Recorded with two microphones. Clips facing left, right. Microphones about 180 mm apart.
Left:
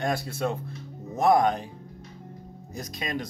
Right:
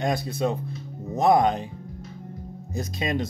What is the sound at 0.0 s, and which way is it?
Speech, 20° right (ahead or behind).